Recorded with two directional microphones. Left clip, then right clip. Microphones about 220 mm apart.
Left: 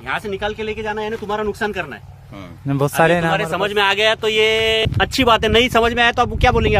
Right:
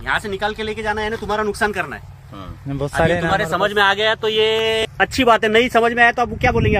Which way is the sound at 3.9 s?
40° left (ahead or behind).